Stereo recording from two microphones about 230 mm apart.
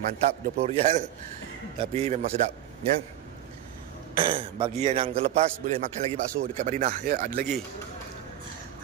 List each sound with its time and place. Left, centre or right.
0.2 s a man's voice: right
4.2 s a man's voice: right